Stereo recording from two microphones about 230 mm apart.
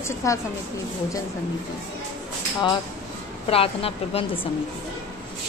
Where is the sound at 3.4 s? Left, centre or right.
Left.